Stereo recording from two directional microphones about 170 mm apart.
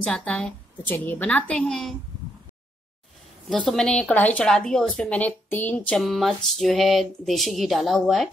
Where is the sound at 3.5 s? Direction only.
5° left (ahead or behind).